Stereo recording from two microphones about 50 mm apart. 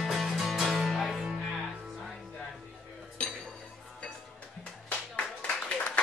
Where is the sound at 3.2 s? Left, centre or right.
Left.